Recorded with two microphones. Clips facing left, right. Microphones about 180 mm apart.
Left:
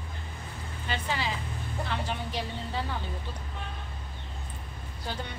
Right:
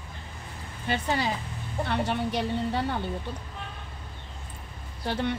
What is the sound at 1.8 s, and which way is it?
A woman's voice, 60° right (ahead or behind).